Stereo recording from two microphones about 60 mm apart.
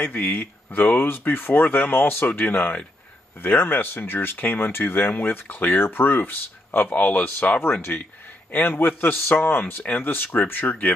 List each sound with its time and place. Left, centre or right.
0.0 s speech: left
9.8 s speech: left